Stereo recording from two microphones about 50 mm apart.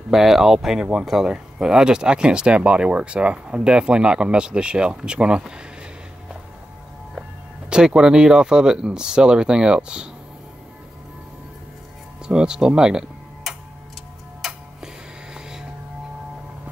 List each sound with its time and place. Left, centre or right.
0.1 s speech: centre
7.7 s speech: centre
12.3 s speech: centre
14.4 s tick-tock: centre